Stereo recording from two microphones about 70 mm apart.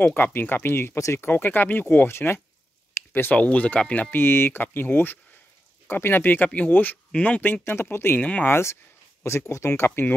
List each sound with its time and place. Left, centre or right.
0.0 s speech: left
0.9 s speech: left
1.2 s speech: left
4.1 s speech: left
7.6 s speech: left
8.2 s speech: centre
8.5 s speech: left